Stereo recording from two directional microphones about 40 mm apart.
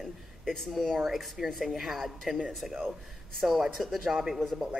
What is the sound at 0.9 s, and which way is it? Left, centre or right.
Speech, centre.